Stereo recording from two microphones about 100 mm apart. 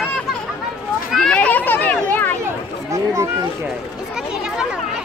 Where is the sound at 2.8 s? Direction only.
30° right (ahead or behind).